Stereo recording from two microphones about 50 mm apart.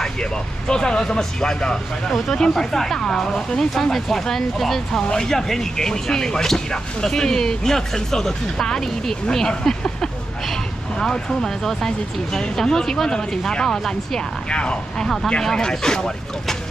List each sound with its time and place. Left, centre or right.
0.0 s speech: centre
9.5 s speech: left
11.0 s speech: centre
14.6 s speech: left